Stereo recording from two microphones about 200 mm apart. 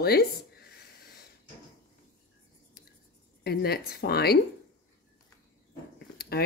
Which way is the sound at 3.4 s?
55° left (ahead or behind).